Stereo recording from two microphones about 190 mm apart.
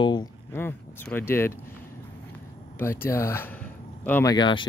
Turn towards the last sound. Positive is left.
turn(degrees=25)  # may be behind; listen again after turning